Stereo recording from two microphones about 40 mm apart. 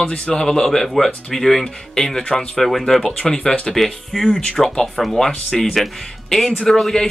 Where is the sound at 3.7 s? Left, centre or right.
Centre.